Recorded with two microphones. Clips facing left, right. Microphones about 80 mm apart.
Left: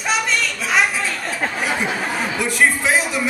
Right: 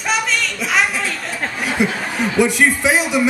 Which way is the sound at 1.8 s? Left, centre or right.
Centre.